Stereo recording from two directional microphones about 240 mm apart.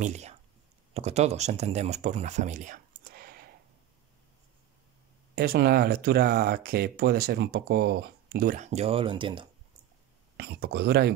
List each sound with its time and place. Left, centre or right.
0.0 s speech: right
5.3 s speech: right
10.3 s speech: right